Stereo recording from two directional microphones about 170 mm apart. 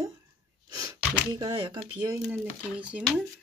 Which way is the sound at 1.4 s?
30° right (ahead or behind).